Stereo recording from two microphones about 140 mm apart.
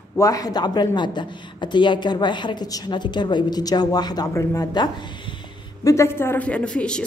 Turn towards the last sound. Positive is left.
turn(degrees=5)  # may be behind; listen again after turning